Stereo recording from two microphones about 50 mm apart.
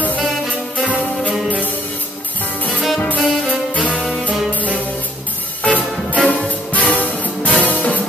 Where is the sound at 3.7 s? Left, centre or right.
Left.